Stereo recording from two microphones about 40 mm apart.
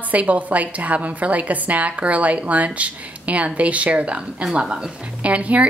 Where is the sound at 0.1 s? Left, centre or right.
Right.